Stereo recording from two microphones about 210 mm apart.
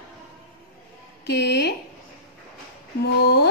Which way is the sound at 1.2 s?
55° left (ahead or behind).